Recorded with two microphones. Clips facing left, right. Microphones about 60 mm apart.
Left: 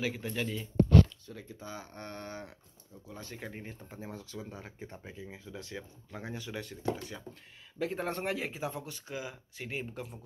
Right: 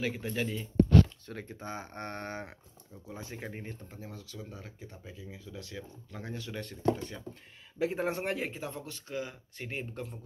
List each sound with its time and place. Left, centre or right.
0.0 s speech: centre
1.2 s speech: right
3.1 s a man's voice: centre
3.3 s speech: centre
3.9 s speech: left
4.7 s speech: left; by 7.2 s centre
7.8 s a man's voice: centre
8.5 s speech: centre